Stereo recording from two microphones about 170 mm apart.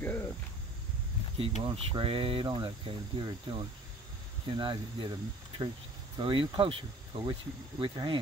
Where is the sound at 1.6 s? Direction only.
30° right (ahead or behind).